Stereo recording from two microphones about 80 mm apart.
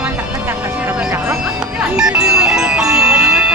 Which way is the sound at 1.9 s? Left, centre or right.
Centre.